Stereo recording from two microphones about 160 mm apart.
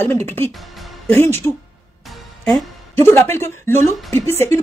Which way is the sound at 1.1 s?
15° left (ahead or behind).